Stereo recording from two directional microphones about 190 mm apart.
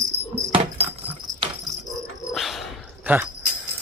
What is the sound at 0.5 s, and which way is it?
Keys jangling, 30° right (ahead or behind).